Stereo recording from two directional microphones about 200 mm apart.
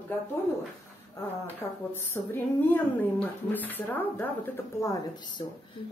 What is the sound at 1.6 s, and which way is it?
A woman's voice, 15° left (ahead or behind).